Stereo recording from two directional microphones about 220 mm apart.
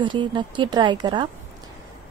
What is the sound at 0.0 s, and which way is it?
A woman's voice, 20° right (ahead or behind).